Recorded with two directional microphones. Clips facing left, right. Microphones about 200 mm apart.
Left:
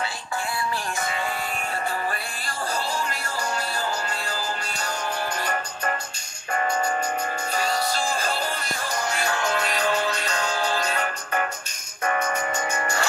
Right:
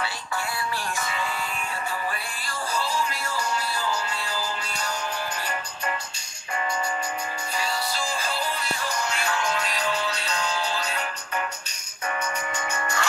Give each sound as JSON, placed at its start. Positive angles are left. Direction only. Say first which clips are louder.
{"t": 1.0, "sound": "music", "louder": "left 2 dB", "side_deg": 50}
{"t": 3.3, "sound": "music", "louder": "left 1 dB", "side_deg": 50}
{"t": 6.5, "sound": "music", "louder": "left 4 dB", "side_deg": 50}